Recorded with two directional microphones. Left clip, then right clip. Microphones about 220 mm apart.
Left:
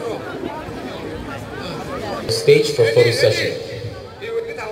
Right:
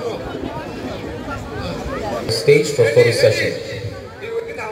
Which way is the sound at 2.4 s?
15° left (ahead or behind).